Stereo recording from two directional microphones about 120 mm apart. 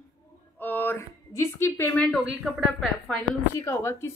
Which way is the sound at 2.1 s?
Centre (ahead or behind).